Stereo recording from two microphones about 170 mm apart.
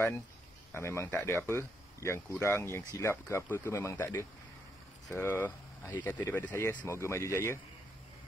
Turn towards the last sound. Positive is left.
turn(degrees=15)  # may be behind; listen again after turning